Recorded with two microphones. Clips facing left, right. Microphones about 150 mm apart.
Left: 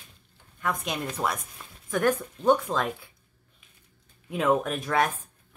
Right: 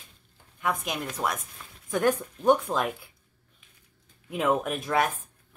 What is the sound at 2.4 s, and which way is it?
Speech, 10° right (ahead or behind).